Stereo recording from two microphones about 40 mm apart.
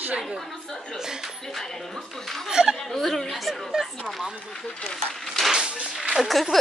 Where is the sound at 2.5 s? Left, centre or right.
Centre.